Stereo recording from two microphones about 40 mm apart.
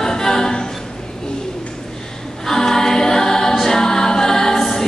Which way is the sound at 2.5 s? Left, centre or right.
Centre.